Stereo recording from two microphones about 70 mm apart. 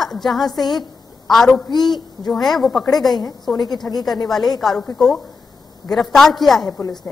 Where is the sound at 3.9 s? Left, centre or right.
Left.